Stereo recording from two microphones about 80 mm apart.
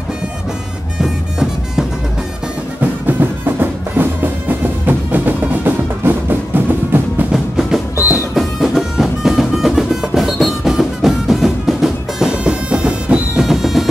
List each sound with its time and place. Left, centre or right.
1.0 s music: centre
2.8 s music: right
7.3 s music: centre